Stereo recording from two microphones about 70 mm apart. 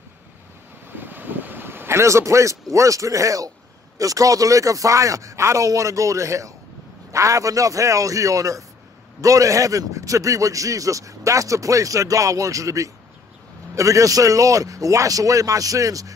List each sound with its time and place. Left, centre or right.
0.9 s vehicle: right
4.0 s a man's voice: right